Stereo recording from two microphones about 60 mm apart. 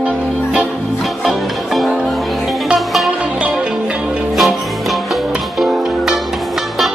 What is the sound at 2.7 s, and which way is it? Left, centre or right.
Music, centre.